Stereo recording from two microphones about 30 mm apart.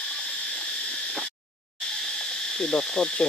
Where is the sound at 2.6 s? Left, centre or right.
Left.